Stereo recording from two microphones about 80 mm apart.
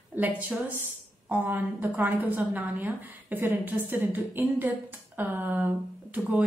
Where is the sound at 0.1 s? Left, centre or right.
Right.